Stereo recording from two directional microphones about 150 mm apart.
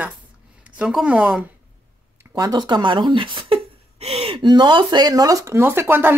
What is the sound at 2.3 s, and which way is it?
Speech, 25° right (ahead or behind).